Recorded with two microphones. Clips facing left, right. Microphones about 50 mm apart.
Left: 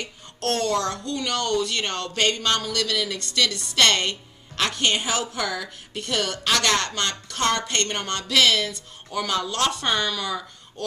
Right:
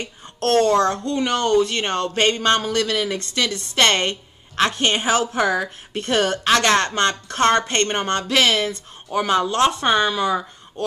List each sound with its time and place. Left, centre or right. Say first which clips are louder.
0.4 s a woman's voice: right 7 dB; right